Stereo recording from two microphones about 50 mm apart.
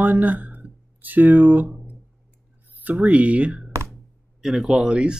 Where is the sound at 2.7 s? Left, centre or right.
Right.